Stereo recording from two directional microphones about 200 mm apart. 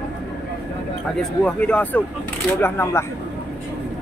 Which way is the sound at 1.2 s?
5° left (ahead or behind).